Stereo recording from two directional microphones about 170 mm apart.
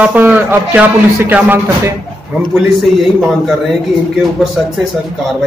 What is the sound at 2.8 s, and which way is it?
Speech, centre (ahead or behind).